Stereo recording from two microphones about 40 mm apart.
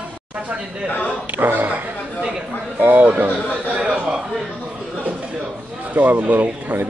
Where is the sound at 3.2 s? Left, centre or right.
Right.